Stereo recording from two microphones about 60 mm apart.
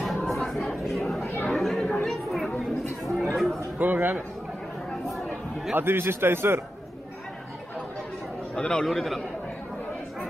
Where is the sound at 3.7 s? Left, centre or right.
Right.